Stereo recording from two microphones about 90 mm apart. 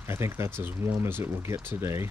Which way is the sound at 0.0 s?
30° right (ahead or behind).